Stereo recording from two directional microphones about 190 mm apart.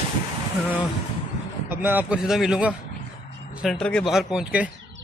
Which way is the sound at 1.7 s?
10° right (ahead or behind).